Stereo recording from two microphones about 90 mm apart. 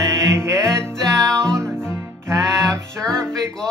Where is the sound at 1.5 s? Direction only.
30° right (ahead or behind).